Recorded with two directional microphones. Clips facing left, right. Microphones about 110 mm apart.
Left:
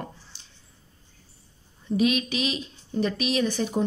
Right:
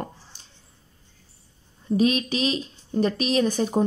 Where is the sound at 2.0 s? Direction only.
35° right (ahead or behind).